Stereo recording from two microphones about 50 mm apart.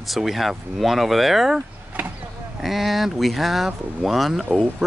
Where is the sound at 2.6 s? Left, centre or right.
Centre.